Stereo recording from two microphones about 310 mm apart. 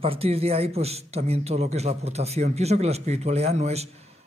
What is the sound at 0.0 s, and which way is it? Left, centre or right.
Speech, centre.